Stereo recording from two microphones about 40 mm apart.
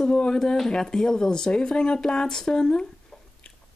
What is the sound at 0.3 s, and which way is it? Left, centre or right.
Speech, centre.